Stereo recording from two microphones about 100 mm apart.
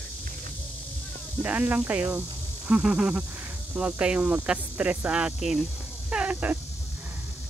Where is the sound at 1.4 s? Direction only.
15° right (ahead or behind).